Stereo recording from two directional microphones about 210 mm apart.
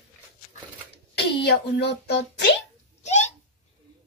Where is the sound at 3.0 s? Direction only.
35° left (ahead or behind).